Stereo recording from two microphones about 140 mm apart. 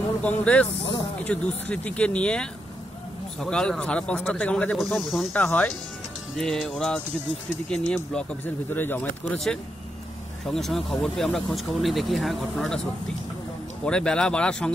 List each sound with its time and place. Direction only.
0.2 s speech: 10° left (ahead or behind)
5.3 s speech: 10° left (ahead or behind)
13.8 s speech: 5° left (ahead or behind)